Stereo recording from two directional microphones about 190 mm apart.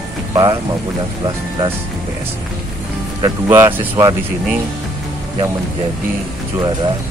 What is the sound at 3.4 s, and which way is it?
Speech, 10° right (ahead or behind).